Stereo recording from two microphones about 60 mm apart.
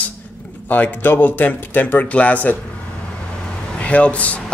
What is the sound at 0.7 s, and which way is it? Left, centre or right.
Speech, left.